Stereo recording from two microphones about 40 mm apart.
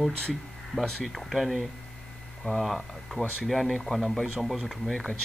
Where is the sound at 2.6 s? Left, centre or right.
Centre.